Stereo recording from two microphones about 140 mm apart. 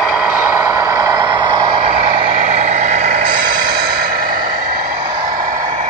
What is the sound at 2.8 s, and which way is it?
Vehicle, 60° right (ahead or behind).